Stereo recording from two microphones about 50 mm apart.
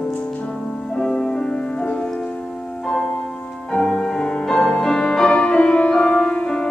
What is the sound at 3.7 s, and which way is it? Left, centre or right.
Music, centre.